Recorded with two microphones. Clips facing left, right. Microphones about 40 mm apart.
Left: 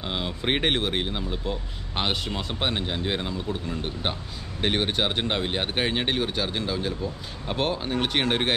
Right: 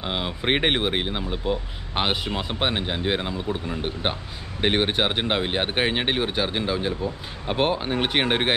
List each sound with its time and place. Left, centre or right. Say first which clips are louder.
0.0 s speech: right 2 dB; centre